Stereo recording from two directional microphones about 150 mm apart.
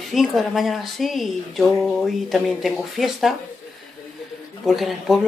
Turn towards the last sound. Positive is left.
turn(degrees=0)  # may be behind; listen again after turning